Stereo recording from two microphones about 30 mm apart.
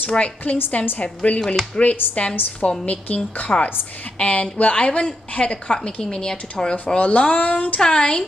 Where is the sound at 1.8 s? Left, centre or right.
Left.